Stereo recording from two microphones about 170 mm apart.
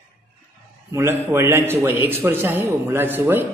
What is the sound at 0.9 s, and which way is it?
A man's voice, 15° right (ahead or behind).